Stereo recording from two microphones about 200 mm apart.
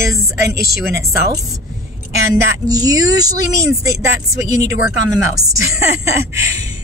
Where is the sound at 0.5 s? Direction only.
15° right (ahead or behind).